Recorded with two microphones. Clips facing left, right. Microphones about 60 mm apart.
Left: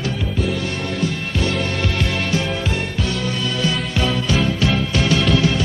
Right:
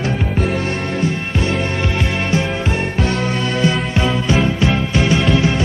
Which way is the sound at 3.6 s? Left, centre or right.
Right.